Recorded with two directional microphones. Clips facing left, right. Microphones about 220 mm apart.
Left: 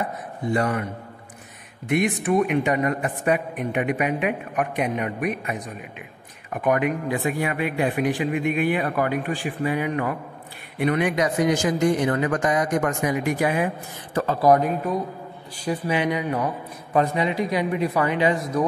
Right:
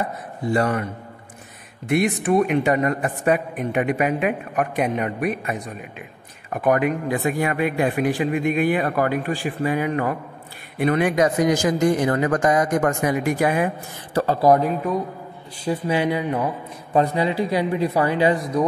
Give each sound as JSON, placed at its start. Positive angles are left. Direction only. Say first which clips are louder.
{"t": 0.6, "sound": "a man's voice", "louder": "right 3 dB", "side_deg": -45}
{"t": 1.9, "sound": "a man's voice", "louder": "right 2 dB", "side_deg": -35}
{"t": 14.1, "sound": "a man's voice", "louder": "right 1 dB", "side_deg": -30}